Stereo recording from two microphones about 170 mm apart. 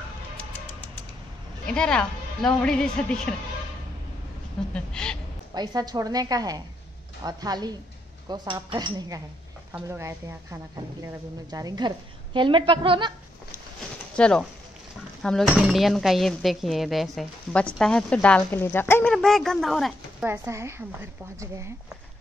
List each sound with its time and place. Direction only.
0.4 s music: 10° left (ahead or behind)
1.7 s speech: 5° left (ahead or behind)
4.7 s speech: 5° left (ahead or behind)
5.5 s a woman's voice: 25° right (ahead or behind)
14.1 s speech: 5° left (ahead or behind)
19.1 s speech: centre (ahead or behind)
20.2 s a woman's voice: 15° right (ahead or behind)